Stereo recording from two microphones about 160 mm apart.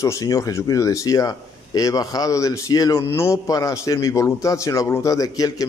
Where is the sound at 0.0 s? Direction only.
20° left (ahead or behind).